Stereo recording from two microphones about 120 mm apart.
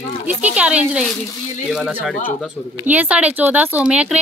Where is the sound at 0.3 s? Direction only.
10° right (ahead or behind).